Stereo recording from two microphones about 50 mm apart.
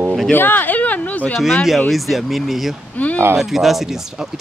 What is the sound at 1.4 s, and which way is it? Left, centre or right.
Speech, centre.